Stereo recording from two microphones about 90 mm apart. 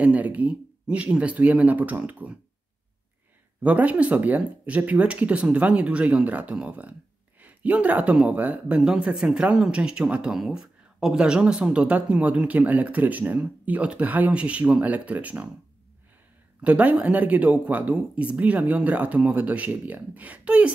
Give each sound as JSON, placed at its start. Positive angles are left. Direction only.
{"t": 0.0, "sound": "speech", "side_deg": -15}
{"t": 3.6, "sound": "speech", "side_deg": -15}
{"t": 16.6, "sound": "speech", "side_deg": -15}